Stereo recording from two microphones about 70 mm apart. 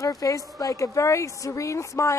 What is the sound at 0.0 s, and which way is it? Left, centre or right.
A woman's voice, left.